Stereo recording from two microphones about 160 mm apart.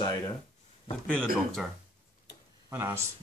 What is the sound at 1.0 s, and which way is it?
Speech, 5° left (ahead or behind).